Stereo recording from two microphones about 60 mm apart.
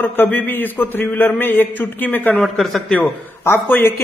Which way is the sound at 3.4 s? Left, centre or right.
Left.